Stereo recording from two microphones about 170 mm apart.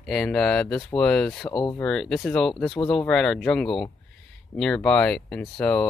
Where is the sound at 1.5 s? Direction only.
25° left (ahead or behind).